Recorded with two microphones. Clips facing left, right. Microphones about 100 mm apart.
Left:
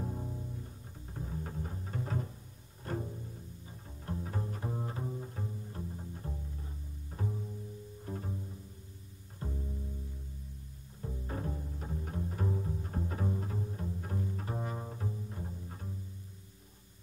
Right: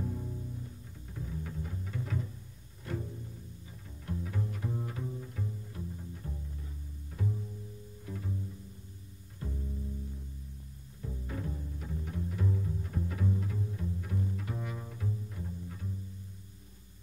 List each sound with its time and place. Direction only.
0.0 s bowed string instrument: 30° left (ahead or behind)
1.1 s music: 40° left (ahead or behind)
4.0 s bowed string instrument: 35° left (ahead or behind)
8.0 s double bass: 40° left (ahead or behind)
9.4 s music: 30° left (ahead or behind)
11.2 s bowed string instrument: 40° left (ahead or behind)